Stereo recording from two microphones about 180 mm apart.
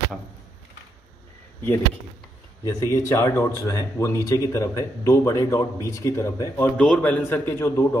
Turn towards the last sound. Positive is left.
turn(degrees=15)  # may be behind; listen again after turning